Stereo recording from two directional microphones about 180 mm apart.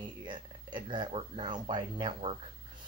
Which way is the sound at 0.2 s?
25° right (ahead or behind).